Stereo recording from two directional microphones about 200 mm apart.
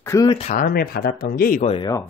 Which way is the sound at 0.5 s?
50° left (ahead or behind).